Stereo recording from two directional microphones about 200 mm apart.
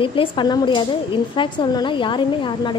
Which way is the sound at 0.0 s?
25° left (ahead or behind).